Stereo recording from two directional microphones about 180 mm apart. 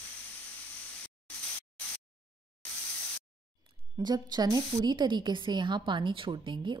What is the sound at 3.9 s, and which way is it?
A woman's voice, 20° right (ahead or behind).